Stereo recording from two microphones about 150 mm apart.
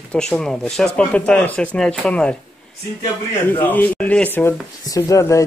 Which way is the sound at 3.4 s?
10° left (ahead or behind).